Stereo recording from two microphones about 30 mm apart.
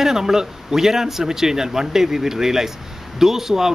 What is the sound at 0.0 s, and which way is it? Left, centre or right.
Speech, centre.